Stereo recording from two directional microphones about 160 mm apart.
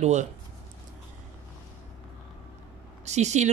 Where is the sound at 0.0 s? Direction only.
45° right (ahead or behind).